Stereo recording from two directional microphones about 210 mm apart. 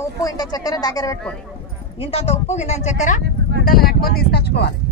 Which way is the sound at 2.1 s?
30° left (ahead or behind).